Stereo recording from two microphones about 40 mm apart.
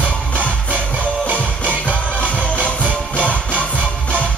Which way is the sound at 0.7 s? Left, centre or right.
Right.